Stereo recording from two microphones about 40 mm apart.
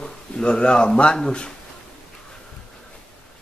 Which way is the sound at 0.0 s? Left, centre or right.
Left.